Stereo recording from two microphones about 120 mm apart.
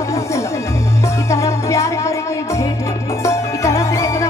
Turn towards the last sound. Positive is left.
turn(degrees=25)  # may be behind; listen again after turning